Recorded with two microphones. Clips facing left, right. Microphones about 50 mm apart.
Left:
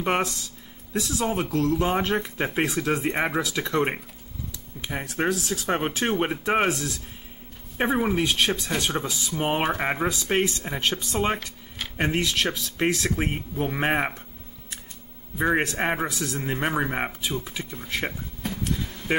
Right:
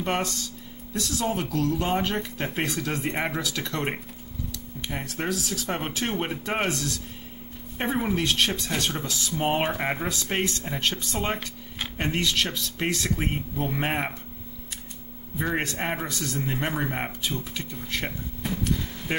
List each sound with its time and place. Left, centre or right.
0.0 s speech: centre
15.3 s speech: centre